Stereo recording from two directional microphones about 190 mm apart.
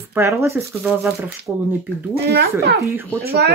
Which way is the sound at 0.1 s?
10° right (ahead or behind).